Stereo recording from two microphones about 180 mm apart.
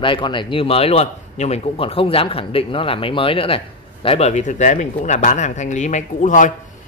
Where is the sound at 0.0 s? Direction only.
25° left (ahead or behind).